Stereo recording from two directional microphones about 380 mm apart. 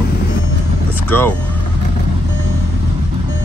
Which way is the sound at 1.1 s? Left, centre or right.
Centre.